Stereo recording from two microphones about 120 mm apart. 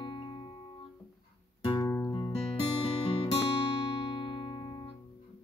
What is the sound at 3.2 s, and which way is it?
Music, 50° left (ahead or behind).